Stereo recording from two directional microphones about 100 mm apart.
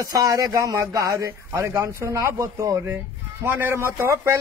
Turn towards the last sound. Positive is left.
turn(degrees=-25)  # may be behind; listen again after turning